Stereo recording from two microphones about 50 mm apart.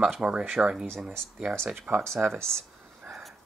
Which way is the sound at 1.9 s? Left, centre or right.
Right.